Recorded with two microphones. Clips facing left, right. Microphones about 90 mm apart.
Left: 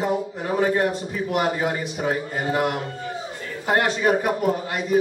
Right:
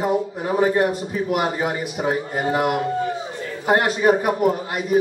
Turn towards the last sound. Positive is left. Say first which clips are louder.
# right 1 dB
turn(degrees=-10)  # may be behind; listen again after turning